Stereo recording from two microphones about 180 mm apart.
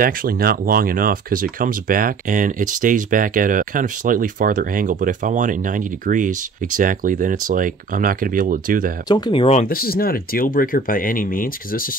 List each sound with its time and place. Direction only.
0.0 s speech: 55° right (ahead or behind)
9.1 s speech: 30° left (ahead or behind)
9.7 s speech: 55° left (ahead or behind)